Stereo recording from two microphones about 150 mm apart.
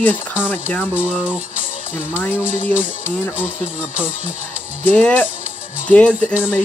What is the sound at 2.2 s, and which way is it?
Speech, 15° left (ahead or behind).